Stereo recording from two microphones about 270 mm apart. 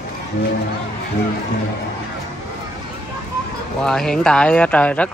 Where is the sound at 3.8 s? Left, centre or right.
Centre.